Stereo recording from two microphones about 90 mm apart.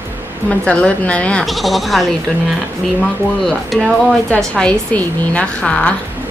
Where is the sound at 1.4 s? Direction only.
Centre (ahead or behind).